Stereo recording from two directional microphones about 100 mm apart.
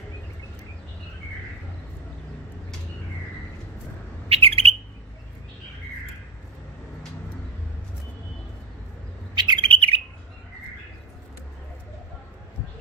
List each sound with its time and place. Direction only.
4.3 s bird: 75° right (ahead or behind)
9.3 s bird: 50° right (ahead or behind)
9.7 s bird: 70° right (ahead or behind)